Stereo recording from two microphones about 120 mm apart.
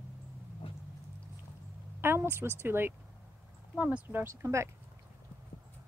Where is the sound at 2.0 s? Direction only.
20° right (ahead or behind).